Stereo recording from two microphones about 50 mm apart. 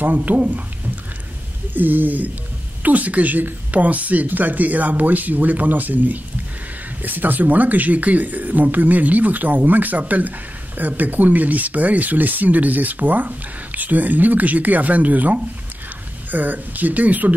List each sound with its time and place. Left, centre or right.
0.0 s speech: right
1.7 s speech: right